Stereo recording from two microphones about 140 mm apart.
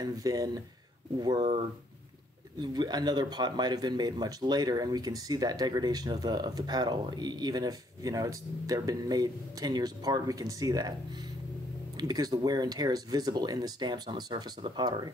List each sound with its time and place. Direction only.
0.0 s speech: 25° right (ahead or behind)
2.6 s speech: 30° right (ahead or behind)
12.0 s speech: 30° right (ahead or behind)